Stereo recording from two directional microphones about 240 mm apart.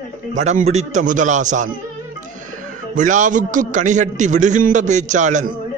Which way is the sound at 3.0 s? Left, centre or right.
Right.